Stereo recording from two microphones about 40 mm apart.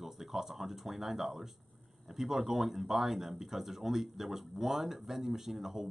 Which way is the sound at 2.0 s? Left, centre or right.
Centre.